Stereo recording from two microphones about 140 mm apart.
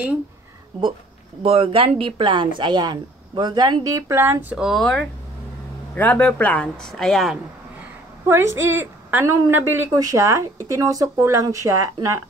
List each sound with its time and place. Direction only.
1.4 s speech: 40° right (ahead or behind)
4.1 s a woman's voice: 15° right (ahead or behind); by 7.3 s centre (ahead or behind)
8.3 s a woman's voice: 20° right (ahead or behind)